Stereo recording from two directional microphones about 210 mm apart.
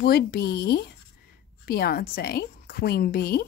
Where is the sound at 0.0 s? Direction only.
45° left (ahead or behind).